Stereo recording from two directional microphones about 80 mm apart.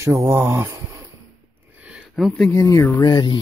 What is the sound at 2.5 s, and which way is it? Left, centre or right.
Speech, left.